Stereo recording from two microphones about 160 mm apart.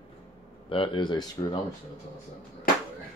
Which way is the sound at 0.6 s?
35° left (ahead or behind).